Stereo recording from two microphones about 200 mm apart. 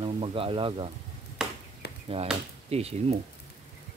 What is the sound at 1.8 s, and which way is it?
Chop, 55° left (ahead or behind).